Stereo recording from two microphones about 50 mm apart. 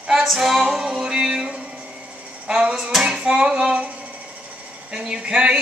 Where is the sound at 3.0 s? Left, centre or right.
Centre.